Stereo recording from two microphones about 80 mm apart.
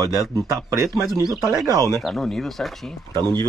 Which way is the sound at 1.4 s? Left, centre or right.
Centre.